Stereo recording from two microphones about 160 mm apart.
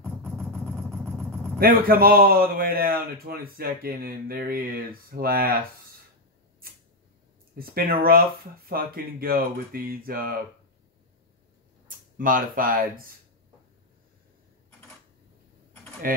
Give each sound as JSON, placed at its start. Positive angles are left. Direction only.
{"t": 0.0, "sound": "vehicle", "side_deg": 10}
{"t": 1.6, "sound": "a man's voice", "side_deg": -65}
{"t": 7.5, "sound": "a man's voice", "side_deg": -65}
{"t": 12.2, "sound": "speech", "side_deg": -60}